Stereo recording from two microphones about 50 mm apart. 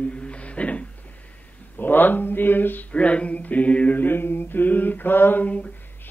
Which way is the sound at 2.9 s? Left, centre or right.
Left.